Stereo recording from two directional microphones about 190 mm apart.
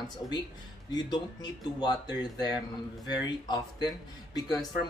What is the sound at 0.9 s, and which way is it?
Speech, 20° left (ahead or behind).